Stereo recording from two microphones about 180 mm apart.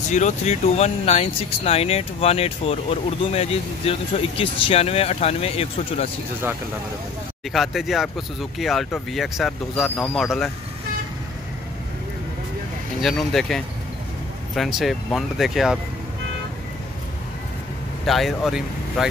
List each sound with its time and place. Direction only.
0.1 s speech: 40° left (ahead or behind)
7.5 s speech: centre (ahead or behind)
13.0 s speech: centre (ahead or behind)
14.8 s speech: centre (ahead or behind)
18.0 s speech: centre (ahead or behind)